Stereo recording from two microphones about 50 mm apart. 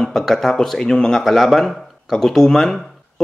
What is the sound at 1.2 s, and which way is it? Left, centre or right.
Speech, centre.